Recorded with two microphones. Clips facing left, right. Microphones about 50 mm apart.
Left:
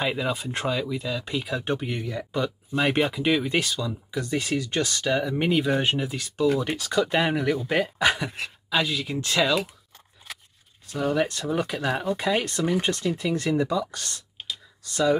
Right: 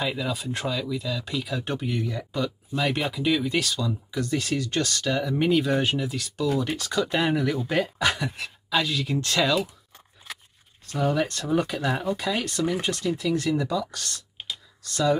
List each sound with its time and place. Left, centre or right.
0.0 s speech: left
3.7 s speech: centre
6.8 s speech: centre
10.9 s speech: centre
12.2 s speech: left
12.9 s speech: centre
13.2 s speech: left